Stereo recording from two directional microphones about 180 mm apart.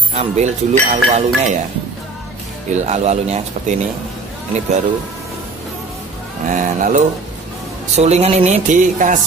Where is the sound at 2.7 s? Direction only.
40° right (ahead or behind).